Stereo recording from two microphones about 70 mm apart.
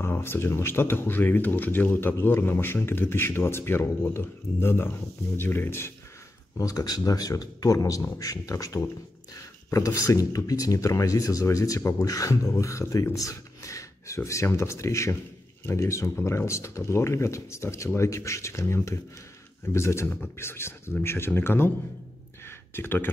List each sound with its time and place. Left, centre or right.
0.0 s speech: left
6.5 s speech: left
22.8 s speech: left